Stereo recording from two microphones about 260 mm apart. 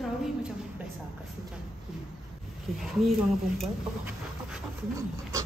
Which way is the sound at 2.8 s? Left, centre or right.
Centre.